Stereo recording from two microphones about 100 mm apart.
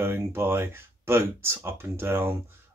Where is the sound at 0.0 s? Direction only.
25° right (ahead or behind).